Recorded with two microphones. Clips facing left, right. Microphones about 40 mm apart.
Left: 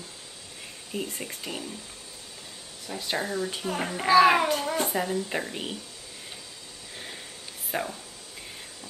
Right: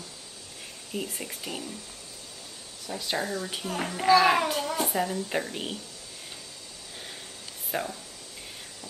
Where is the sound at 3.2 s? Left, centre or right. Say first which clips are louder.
Left 1 dB; left.